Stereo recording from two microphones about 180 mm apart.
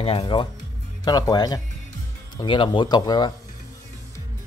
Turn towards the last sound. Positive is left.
turn(degrees=25)  # may be behind; listen again after turning